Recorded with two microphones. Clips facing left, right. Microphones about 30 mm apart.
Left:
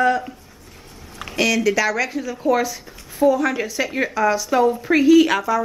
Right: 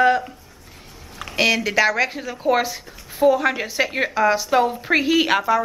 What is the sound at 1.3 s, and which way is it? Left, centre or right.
Speech, right.